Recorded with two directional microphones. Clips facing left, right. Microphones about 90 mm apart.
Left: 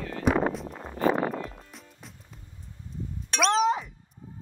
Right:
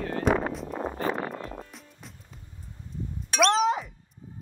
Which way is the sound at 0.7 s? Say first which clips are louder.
Right 8 dB; 45° right (ahead or behind).